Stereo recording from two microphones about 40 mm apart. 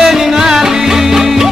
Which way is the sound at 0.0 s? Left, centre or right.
Centre.